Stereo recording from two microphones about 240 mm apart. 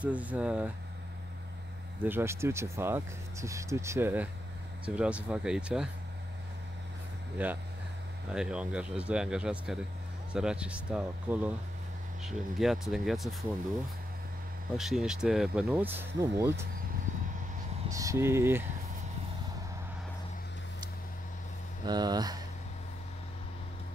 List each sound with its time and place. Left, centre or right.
0.0 s speech: centre
2.0 s speech: centre
7.4 s speech: centre
14.8 s speech: centre
17.8 s speech: centre
21.8 s speech: centre